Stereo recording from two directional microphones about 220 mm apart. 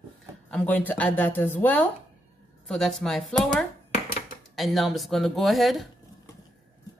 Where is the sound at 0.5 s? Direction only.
5° left (ahead or behind).